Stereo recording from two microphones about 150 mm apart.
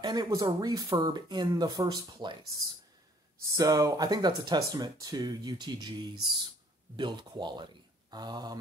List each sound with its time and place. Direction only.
0.0 s speech: 25° right (ahead or behind)
3.5 s a man's voice: 25° right (ahead or behind)